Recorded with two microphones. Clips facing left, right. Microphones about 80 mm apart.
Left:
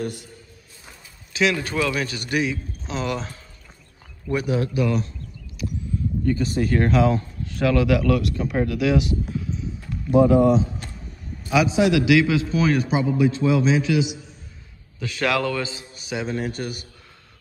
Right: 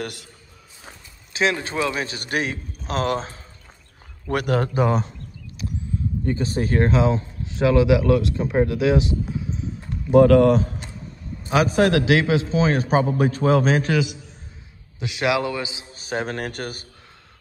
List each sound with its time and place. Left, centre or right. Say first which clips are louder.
0.0 s a man's voice: left 2 dB; right
1.3 s a man's voice: even; right
4.3 s speech: right 1 dB; right
5.6 s a sound: left 2 dB; right
6.2 s speech: left 2 dB; right
10.1 s speech: right 2 dB; right
11.4 s a man's voice: right 1 dB; right
12.9 s a man's voice: right 1 dB; right
15.0 s a man's voice: right 1 dB; centre
15.9 s a sound: right 2 dB; right
16.3 s a man's voice: left 1 dB; right